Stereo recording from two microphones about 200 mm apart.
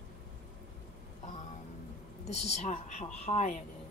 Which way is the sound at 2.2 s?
35° left (ahead or behind).